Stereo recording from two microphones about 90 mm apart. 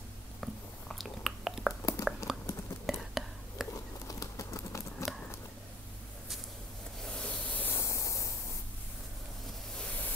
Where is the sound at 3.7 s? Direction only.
40° left (ahead or behind).